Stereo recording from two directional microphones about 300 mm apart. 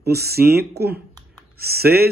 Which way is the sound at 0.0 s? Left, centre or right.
Right.